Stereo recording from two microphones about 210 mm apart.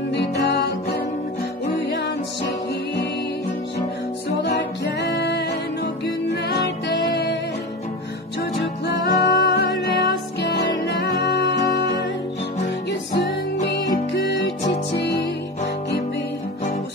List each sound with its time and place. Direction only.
0.1 s music: 55° left (ahead or behind)
4.3 s music: 55° left (ahead or behind)
8.4 s music: 55° left (ahead or behind)
13.1 s music: 50° left (ahead or behind)